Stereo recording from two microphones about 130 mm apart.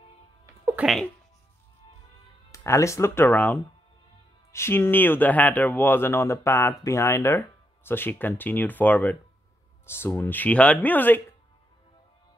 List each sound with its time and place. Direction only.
0.8 s speech: centre (ahead or behind)
2.5 s speech: 20° left (ahead or behind)